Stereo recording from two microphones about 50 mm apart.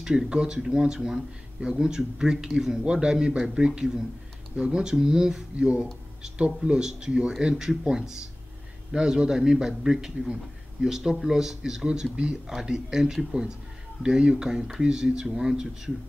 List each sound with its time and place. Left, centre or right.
0.0 s speech: centre